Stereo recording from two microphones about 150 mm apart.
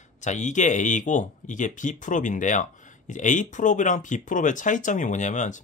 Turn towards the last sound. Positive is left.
turn(degrees=55)  # may be behind; listen again after turning